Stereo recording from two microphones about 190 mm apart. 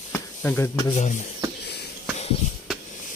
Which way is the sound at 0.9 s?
40° left (ahead or behind).